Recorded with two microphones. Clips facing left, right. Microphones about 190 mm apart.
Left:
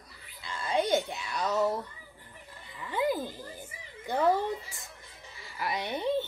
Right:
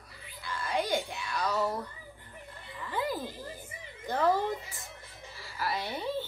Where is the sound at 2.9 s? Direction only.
15° left (ahead or behind).